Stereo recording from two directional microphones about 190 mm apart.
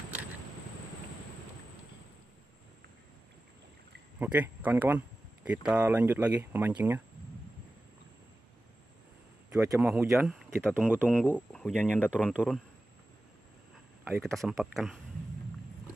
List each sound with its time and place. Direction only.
4.2 s speech: 10° right (ahead or behind)
9.7 s speech: 10° right (ahead or behind)
11.1 s speech: 5° left (ahead or behind)
12.3 s speech: centre (ahead or behind)
14.2 s speech: centre (ahead or behind)